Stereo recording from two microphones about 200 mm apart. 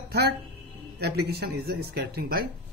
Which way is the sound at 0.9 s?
55° right (ahead or behind).